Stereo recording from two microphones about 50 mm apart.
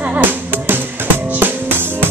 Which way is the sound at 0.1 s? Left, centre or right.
Right.